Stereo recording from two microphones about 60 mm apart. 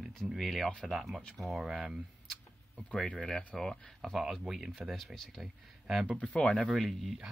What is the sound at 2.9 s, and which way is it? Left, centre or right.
Speech, centre.